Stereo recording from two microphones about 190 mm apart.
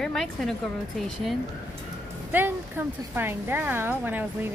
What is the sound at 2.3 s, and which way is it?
A woman's voice, 10° right (ahead or behind).